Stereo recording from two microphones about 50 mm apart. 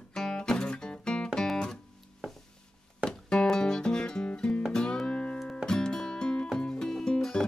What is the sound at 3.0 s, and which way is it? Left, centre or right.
Music, centre.